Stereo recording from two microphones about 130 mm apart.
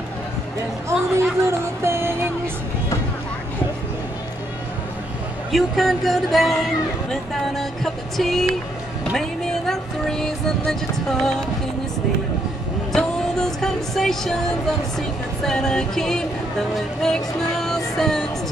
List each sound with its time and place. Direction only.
0.8 s a sound: 20° right (ahead or behind)
5.5 s speech: centre (ahead or behind)
9.7 s music: 5° left (ahead or behind)
12.9 s a sound: 5° left (ahead or behind)
15.0 s speech: 5° left (ahead or behind)
16.7 s music: 5° left (ahead or behind)